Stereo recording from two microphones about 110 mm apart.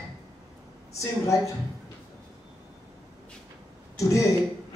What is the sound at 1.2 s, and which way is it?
Speech, 25° left (ahead or behind).